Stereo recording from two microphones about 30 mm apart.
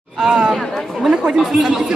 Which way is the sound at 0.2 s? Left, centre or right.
Centre.